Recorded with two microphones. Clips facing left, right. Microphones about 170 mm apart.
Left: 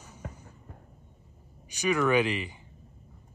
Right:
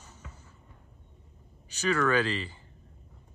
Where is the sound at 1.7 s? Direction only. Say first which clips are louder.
Left 1 dB; 15° left (ahead or behind).